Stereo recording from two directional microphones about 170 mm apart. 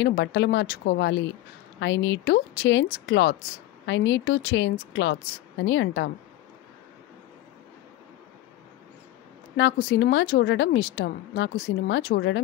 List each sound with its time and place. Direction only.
0.0 s a woman's voice: 90° left
9.6 s a woman's voice: 90° left